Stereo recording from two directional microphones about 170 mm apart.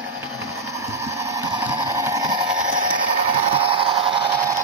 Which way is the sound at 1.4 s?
15° right (ahead or behind).